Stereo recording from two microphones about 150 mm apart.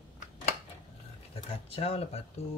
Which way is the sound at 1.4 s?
40° left (ahead or behind).